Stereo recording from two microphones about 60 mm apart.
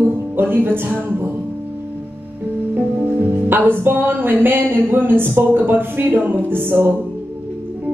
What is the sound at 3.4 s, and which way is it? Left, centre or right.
Music, right.